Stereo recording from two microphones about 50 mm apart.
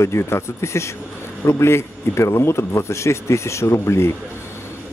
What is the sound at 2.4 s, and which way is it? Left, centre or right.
Speech, left.